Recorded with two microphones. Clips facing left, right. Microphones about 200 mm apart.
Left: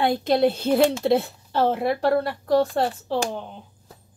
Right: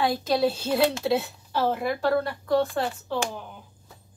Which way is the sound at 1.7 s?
30° left (ahead or behind).